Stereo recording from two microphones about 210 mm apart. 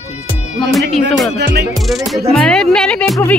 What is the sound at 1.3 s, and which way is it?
Music, 50° right (ahead or behind).